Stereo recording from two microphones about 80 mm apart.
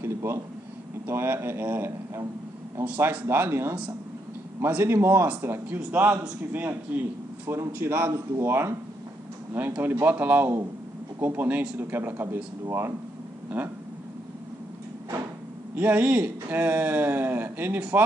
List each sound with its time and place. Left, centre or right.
0.0 s a sound: right
1.0 s a man's voice: right
3.3 s a man's voice: right
13.5 s speech: centre
15.7 s speech: centre